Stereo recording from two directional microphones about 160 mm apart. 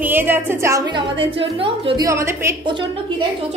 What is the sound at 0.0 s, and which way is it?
Speech, 10° right (ahead or behind).